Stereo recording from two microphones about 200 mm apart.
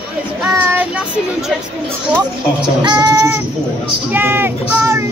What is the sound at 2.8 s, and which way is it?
Speech, 20° right (ahead or behind).